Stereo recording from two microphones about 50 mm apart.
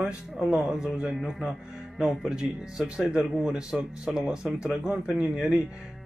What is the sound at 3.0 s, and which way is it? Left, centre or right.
Speech, centre.